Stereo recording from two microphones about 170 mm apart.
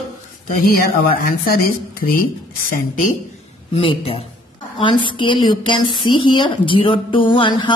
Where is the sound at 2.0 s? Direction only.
55° left (ahead or behind).